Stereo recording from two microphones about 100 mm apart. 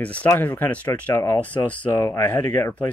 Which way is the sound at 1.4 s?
15° left (ahead or behind).